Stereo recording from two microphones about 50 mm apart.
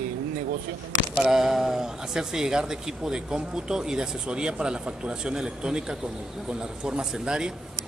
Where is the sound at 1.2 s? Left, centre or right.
Centre.